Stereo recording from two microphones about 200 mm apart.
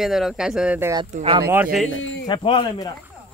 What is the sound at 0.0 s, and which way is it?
Speech, centre (ahead or behind).